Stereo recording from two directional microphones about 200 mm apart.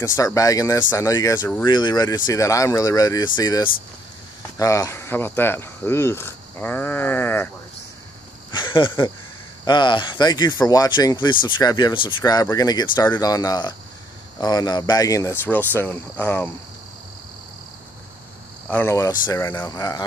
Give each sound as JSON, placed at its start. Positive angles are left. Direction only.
{"t": 0.0, "sound": "speech", "side_deg": 15}
{"t": 8.5, "sound": "a sound", "side_deg": 25}
{"t": 9.7, "sound": "speech", "side_deg": 20}
{"t": 18.7, "sound": "speech", "side_deg": 10}